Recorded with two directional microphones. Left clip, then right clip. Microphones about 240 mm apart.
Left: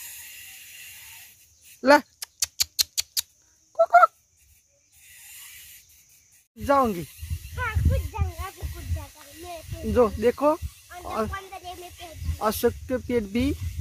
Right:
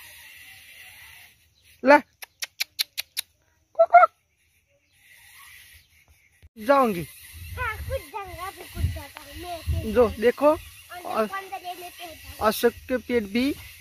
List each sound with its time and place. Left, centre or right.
1.8 s a sound: centre
3.7 s fowl: centre
6.6 s speech: centre
7.1 s snake: centre
9.8 s speech: centre
11.3 s snake: left
12.4 s speech: centre